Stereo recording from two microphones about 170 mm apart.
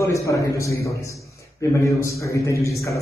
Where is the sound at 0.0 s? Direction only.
15° left (ahead or behind).